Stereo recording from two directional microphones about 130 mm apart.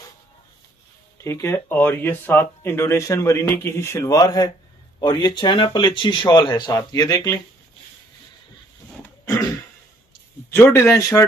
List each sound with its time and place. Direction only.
1.1 s speech: 20° left (ahead or behind)
9.2 s throat clearing: 25° left (ahead or behind)
10.5 s speech: 20° left (ahead or behind)